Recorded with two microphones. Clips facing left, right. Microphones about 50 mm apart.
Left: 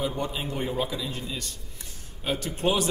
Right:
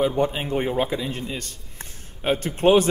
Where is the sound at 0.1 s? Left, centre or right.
Right.